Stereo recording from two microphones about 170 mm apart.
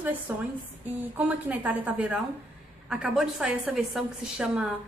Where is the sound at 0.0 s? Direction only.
10° right (ahead or behind).